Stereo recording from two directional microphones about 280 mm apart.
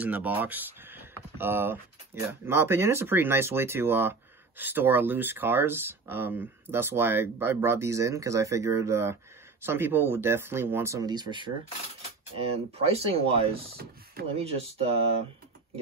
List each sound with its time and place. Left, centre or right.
0.0 s speech: centre
12.7 s speech: right